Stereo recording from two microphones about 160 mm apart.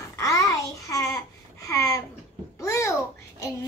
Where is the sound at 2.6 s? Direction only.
20° left (ahead or behind).